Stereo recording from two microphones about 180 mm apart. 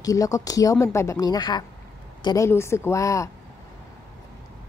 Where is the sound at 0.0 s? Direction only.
20° left (ahead or behind).